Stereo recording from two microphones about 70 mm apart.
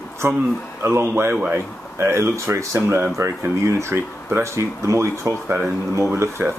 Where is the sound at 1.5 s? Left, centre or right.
Right.